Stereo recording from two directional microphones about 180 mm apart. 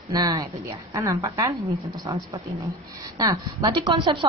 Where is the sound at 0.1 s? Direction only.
20° right (ahead or behind).